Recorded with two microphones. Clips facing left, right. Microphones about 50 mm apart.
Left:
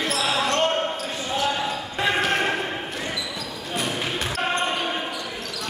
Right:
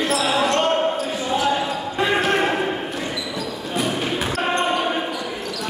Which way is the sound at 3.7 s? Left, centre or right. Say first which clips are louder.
Right 4 dB; centre.